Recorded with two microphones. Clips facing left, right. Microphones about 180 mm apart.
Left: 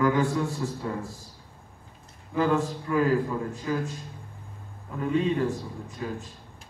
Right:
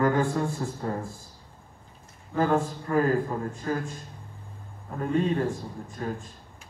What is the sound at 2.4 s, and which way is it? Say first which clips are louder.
A man's voice: even; 45° right (ahead or behind).